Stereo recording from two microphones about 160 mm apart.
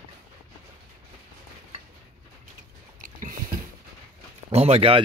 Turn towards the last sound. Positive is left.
turn(degrees=-40)  # may be behind; listen again after turning